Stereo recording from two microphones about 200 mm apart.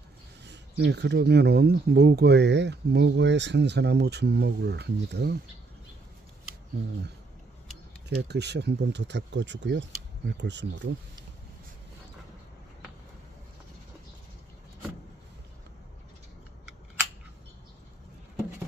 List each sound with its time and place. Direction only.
0.5 s speech: 60° right (ahead or behind)
8.1 s speech: 55° right (ahead or behind)